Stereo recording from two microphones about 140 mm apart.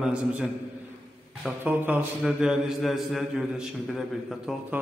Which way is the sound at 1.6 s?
15° right (ahead or behind).